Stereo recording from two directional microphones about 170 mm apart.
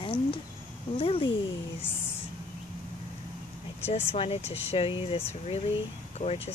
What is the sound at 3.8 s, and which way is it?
Speech, 35° left (ahead or behind).